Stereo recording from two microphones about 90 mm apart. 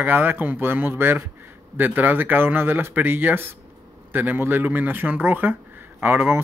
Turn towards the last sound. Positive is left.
turn(degrees=-20)  # may be behind; listen again after turning